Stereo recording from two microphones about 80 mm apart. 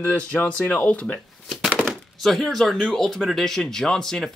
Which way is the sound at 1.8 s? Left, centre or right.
Centre.